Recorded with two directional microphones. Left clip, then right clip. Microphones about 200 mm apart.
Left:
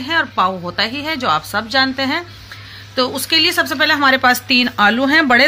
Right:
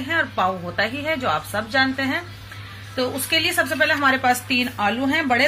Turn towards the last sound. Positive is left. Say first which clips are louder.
# left 8 dB
turn(degrees=45)  # may be behind; listen again after turning